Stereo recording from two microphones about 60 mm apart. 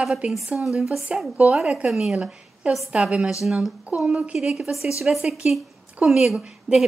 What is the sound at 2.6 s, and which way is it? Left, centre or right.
Speech, centre.